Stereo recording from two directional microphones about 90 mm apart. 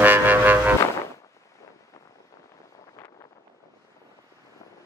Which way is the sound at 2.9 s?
40° left (ahead or behind).